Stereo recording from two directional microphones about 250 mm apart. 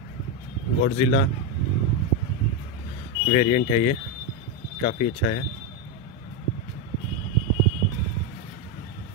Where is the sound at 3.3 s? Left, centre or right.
Left.